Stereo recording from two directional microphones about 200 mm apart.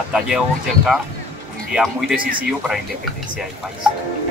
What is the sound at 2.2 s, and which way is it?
Speech, 45° right (ahead or behind).